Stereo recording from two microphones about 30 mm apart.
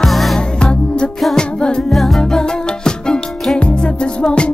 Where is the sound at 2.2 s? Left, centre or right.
Left.